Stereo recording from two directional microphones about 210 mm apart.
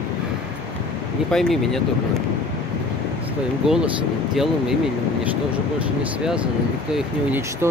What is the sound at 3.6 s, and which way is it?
Speech, centre (ahead or behind).